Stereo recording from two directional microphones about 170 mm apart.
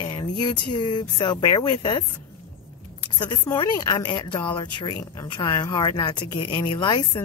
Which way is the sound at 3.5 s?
25° left (ahead or behind).